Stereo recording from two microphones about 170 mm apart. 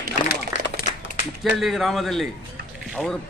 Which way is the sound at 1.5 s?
Centre (ahead or behind).